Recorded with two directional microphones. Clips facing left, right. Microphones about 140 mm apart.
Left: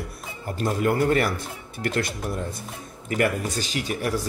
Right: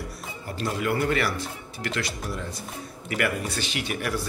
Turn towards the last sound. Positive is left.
turn(degrees=35)  # may be behind; listen again after turning